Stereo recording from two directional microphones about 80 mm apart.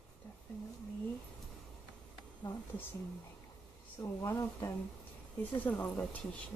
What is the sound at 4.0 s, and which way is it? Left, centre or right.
Speech, left.